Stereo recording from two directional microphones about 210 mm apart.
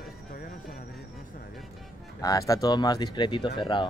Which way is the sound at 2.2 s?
15° left (ahead or behind).